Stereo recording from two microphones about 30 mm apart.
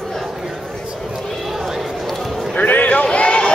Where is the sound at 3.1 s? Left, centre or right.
Left.